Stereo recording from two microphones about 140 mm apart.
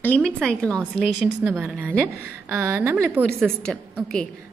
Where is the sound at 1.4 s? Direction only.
10° right (ahead or behind).